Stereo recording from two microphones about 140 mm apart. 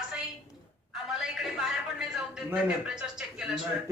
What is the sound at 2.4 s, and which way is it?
Speech, 5° right (ahead or behind).